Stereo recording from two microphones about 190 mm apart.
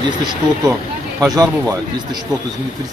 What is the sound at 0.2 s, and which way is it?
Speech, 20° right (ahead or behind).